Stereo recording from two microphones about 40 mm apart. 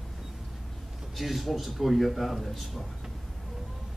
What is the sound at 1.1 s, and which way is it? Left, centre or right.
Speech, centre.